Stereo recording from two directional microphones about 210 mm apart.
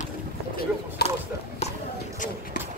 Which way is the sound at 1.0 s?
50° left (ahead or behind).